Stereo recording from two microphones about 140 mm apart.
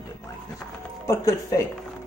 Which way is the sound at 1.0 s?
20° left (ahead or behind).